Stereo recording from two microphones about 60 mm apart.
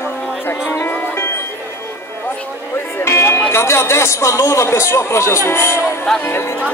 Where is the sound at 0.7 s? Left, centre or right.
Left.